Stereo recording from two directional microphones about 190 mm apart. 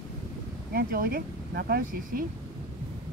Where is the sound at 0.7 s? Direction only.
50° right (ahead or behind).